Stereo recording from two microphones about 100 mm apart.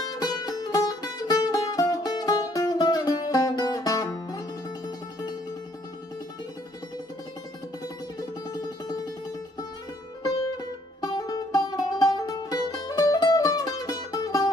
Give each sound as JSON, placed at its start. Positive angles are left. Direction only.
{"t": 0.0, "sound": "music", "side_deg": 40}
{"t": 8.2, "sound": "music", "side_deg": 40}
{"t": 10.2, "sound": "music", "side_deg": 40}